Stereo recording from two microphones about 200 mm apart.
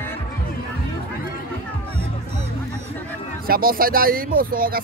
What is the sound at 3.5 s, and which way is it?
Speech, 45° right (ahead or behind).